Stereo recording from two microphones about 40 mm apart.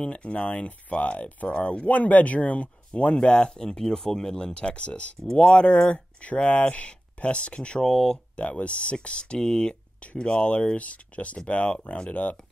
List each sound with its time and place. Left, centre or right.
0.0 s speech: left
5.2 s speech: centre
5.5 s speech: left; by 8.2 s centre
8.6 s speech: left